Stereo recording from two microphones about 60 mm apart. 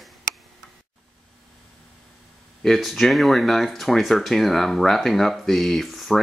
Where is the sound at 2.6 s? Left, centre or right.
Centre.